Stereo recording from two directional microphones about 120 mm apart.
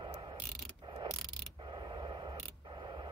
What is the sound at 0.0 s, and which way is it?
Mechanisms, 40° right (ahead or behind).